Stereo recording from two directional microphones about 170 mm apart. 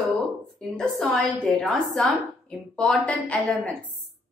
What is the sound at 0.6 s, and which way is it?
A woman's voice, centre (ahead or behind).